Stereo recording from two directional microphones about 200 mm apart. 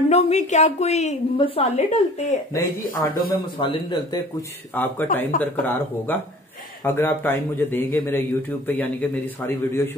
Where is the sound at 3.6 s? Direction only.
25° left (ahead or behind).